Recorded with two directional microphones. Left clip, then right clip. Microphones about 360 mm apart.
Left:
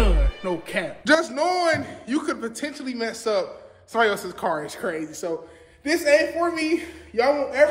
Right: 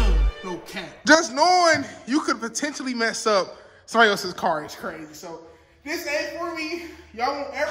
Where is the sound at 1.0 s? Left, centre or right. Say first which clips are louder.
Right 4 dB; centre.